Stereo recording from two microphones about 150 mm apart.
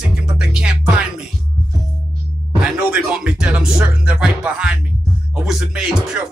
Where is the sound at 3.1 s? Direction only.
5° right (ahead or behind).